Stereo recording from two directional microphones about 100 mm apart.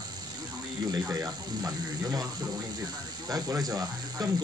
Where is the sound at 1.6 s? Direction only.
40° right (ahead or behind).